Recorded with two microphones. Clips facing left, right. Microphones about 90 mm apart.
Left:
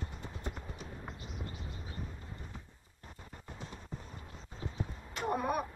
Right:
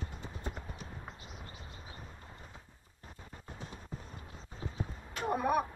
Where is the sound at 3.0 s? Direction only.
Centre (ahead or behind).